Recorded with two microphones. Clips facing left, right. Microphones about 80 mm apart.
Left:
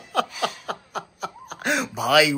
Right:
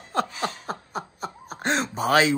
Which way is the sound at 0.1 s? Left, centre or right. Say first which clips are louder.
Left 2 dB; left.